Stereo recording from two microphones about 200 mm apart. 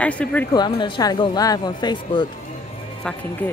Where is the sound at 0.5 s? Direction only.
20° left (ahead or behind).